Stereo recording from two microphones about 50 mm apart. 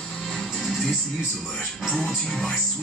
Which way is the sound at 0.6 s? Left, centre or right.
Centre.